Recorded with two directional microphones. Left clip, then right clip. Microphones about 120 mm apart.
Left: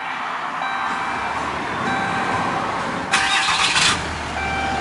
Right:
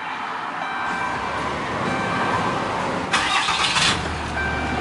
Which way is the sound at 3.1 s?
25° left (ahead or behind).